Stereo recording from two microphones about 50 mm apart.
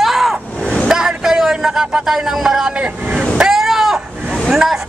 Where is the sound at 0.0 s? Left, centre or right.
Centre.